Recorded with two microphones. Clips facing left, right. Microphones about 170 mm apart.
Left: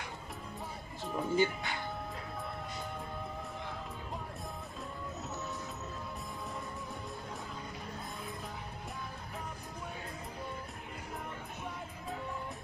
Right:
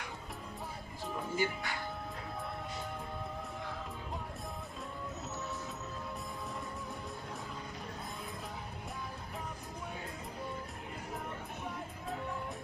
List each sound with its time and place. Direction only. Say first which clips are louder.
1.3 s speech: left 5 dB; 20° left (ahead or behind)